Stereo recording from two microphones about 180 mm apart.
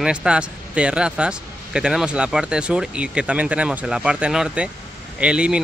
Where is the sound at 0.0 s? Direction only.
5° right (ahead or behind).